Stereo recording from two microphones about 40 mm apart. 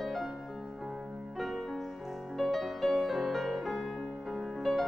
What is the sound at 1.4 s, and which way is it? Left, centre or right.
Music, centre.